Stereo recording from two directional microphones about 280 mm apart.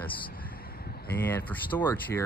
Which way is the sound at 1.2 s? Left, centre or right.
Centre.